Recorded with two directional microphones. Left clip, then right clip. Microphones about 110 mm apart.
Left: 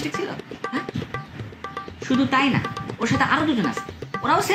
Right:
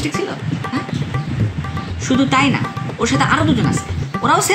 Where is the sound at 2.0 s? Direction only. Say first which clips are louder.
Right 5 dB; 15° right (ahead or behind).